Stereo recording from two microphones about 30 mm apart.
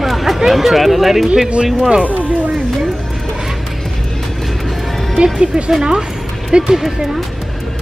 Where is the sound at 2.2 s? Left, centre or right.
Right.